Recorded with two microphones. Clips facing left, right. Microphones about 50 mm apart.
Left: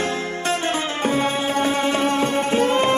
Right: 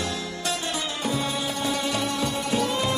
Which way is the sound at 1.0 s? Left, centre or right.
Left.